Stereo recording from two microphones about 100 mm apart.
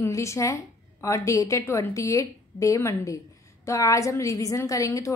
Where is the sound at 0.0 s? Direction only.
30° left (ahead or behind).